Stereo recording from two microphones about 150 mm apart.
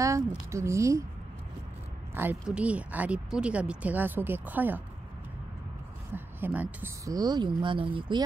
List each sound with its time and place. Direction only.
0.5 s a woman's voice: 20° right (ahead or behind)
2.1 s speech: 10° right (ahead or behind)
6.1 s speech: 10° right (ahead or behind)
7.1 s speech: 25° right (ahead or behind)